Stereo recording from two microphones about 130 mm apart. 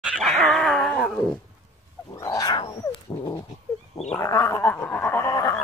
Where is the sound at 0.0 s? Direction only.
10° right (ahead or behind).